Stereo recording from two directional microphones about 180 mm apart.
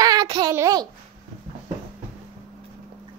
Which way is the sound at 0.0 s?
20° right (ahead or behind).